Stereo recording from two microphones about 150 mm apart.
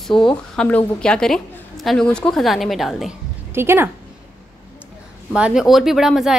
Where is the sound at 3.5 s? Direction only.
15° right (ahead or behind).